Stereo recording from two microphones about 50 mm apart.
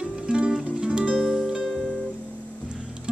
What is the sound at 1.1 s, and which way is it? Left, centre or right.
Music, centre.